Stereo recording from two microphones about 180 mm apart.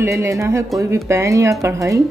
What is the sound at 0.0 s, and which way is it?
Speech, 15° right (ahead or behind).